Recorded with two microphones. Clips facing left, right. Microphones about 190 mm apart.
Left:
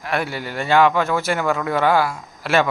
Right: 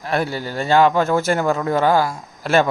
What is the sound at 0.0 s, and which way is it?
A man's voice, 35° right (ahead or behind).